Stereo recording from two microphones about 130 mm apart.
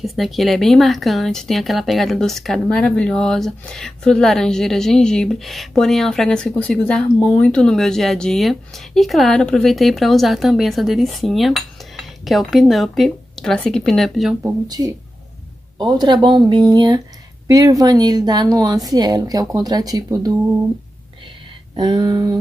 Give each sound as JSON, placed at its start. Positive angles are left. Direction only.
{"t": 0.0, "sound": "speech", "side_deg": 0}
{"t": 15.8, "sound": "speech", "side_deg": -35}
{"t": 21.7, "sound": "speech", "side_deg": -35}